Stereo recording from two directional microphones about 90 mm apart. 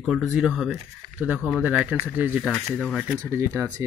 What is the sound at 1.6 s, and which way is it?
Speech, 15° right (ahead or behind).